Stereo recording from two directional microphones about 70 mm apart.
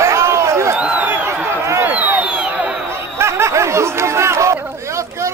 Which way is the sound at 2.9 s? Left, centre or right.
Right.